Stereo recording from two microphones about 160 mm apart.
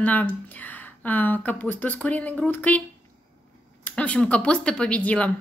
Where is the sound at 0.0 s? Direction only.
10° left (ahead or behind).